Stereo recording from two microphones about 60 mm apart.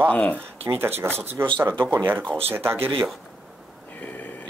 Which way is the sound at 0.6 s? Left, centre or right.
Right.